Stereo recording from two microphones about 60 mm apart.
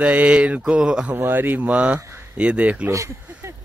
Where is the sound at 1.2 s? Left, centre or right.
Right.